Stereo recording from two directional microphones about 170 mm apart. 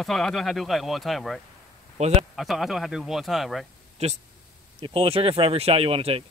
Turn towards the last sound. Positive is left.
turn(degrees=-35)  # may be behind; listen again after turning